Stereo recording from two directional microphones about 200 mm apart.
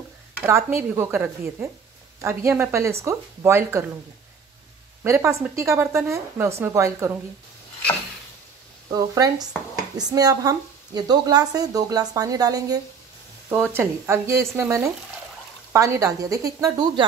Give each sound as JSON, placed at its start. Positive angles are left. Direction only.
{"t": 0.4, "sound": "speech", "side_deg": -15}
{"t": 5.0, "sound": "speech", "side_deg": -15}
{"t": 8.9, "sound": "a woman's voice", "side_deg": -20}